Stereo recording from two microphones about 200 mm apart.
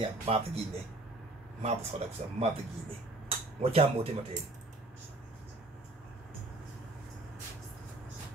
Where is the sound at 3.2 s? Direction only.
30° right (ahead or behind).